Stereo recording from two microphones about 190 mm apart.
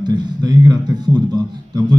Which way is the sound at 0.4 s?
20° right (ahead or behind).